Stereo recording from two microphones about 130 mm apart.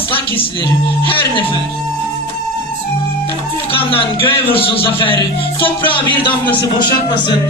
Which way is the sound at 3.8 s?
45° left (ahead or behind).